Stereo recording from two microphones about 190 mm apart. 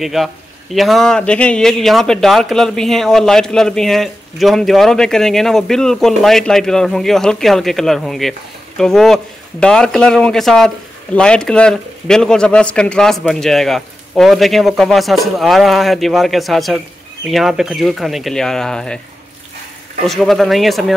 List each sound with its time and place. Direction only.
0.0 s a man's voice: centre (ahead or behind)
20.1 s a man's voice: centre (ahead or behind)